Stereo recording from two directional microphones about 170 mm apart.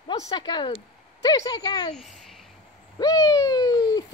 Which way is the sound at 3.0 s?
20° left (ahead or behind).